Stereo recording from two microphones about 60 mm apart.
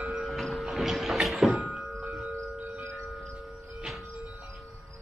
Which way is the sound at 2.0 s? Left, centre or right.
Right.